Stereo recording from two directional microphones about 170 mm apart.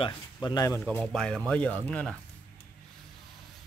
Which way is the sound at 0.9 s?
5° left (ahead or behind).